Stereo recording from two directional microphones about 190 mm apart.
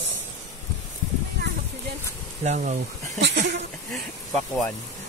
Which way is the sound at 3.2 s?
70° right (ahead or behind).